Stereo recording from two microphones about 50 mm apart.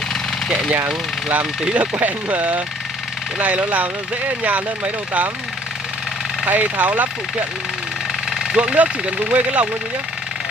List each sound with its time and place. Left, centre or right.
1.4 s speech: right
1.8 s speech: right
6.4 s speech: right
8.3 s a sound: centre
8.7 s speech: right